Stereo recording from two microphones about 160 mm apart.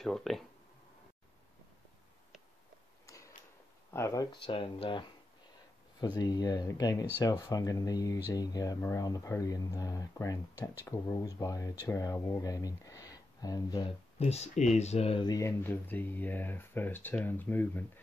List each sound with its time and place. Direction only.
0.0 s speech: centre (ahead or behind)
3.9 s speech: 20° left (ahead or behind)
4.5 s speech: 35° left (ahead or behind)
14.1 s speech: 40° left (ahead or behind)
15.2 s speech: 20° left (ahead or behind)
15.6 s speech: 10° left (ahead or behind)